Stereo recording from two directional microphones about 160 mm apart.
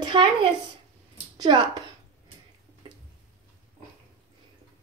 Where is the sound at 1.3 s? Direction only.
30° right (ahead or behind).